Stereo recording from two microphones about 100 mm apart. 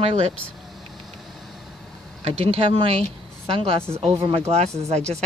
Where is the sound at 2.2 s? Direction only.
70° right (ahead or behind); by 5.0 s 90° right.